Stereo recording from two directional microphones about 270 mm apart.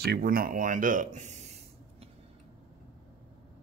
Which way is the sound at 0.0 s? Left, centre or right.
Right.